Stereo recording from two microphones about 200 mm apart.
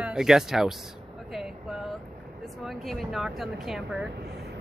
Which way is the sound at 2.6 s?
Centre (ahead or behind).